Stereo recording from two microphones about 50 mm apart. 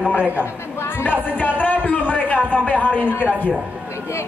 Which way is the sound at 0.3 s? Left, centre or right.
Left.